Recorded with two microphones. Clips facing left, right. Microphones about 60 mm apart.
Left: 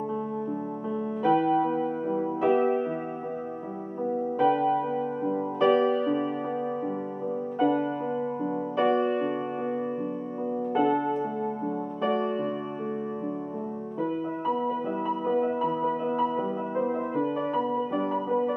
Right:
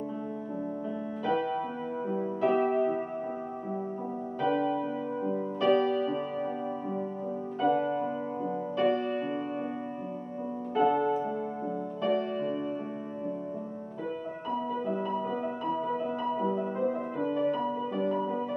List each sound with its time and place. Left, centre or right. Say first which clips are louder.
1.2 s music: left 7 dB; centre
4.4 s music: left 4 dB; centre
8.7 s music: left 4 dB; centre
10.7 s music: even; centre
14.9 s music: left 3 dB; left
17.9 s music: left 2 dB; left